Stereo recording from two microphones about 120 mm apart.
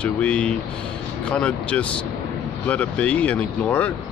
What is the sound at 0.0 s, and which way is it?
Speech, 10° left (ahead or behind).